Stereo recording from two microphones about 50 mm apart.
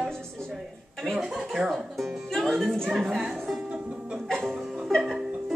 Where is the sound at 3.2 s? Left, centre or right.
Centre.